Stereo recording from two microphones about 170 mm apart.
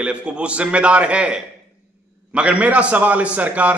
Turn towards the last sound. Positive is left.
turn(degrees=-10)  # may be behind; listen again after turning